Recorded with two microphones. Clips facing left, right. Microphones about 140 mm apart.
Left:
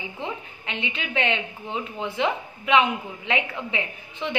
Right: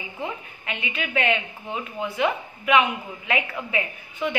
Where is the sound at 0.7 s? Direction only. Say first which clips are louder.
Right 1 dB; 25° left (ahead or behind).